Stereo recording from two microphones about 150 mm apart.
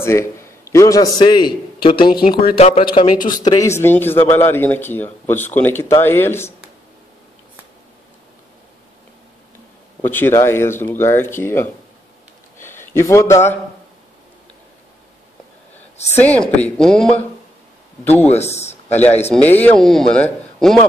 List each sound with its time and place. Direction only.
0.0 s a man's voice: 15° left (ahead or behind); by 3.1 s 35° left (ahead or behind)
3.2 s speech: 65° left (ahead or behind)
3.4 s a man's voice: 20° left (ahead or behind)
10.0 s a man's voice: 15° left (ahead or behind)
12.5 s a sound: 15° left (ahead or behind)
16.2 s speech: 10° left (ahead or behind)
18.2 s speech: 45° left (ahead or behind)
19.3 s speech: 10° left (ahead or behind)